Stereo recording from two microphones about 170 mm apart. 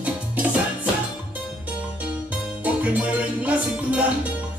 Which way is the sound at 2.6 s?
10° right (ahead or behind).